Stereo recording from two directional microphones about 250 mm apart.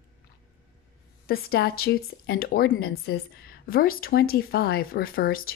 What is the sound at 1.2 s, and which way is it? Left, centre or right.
Speech, left.